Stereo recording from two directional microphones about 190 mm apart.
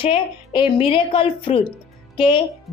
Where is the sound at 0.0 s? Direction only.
25° left (ahead or behind).